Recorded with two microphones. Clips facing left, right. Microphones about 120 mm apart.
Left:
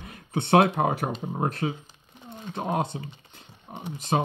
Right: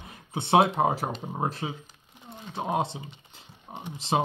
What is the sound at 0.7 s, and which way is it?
Speech, 30° right (ahead or behind).